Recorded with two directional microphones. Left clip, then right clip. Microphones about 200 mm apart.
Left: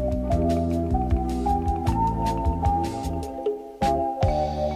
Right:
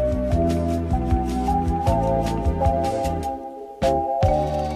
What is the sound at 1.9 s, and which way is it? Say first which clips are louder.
Music: right 3 dB; 15° left (ahead or behind).